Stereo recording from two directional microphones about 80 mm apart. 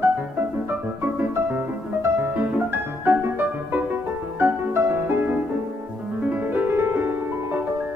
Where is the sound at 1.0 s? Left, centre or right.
Right.